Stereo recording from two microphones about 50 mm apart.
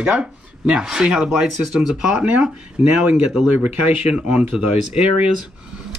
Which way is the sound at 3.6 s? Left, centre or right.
Right.